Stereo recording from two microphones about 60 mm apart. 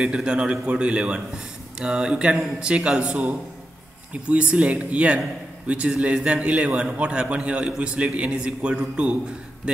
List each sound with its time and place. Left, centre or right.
0.0 s a man's voice: centre